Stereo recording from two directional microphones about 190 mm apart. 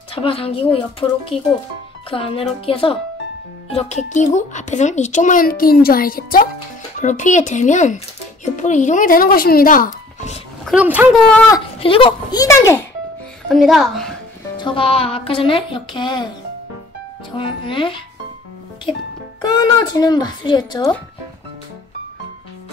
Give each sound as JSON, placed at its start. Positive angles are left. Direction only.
{"t": 0.1, "sound": "a woman's voice", "side_deg": 30}
{"t": 10.6, "sound": "speech", "side_deg": -5}
{"t": 11.1, "sound": "a child's voice", "side_deg": 5}
{"t": 11.5, "sound": "a woman's voice", "side_deg": 30}
{"t": 13.5, "sound": "a child's voice", "side_deg": 0}
{"t": 14.6, "sound": "a woman's voice", "side_deg": 25}
{"t": 17.4, "sound": "a woman's voice", "side_deg": 25}
{"t": 19.4, "sound": "a woman's voice", "side_deg": 20}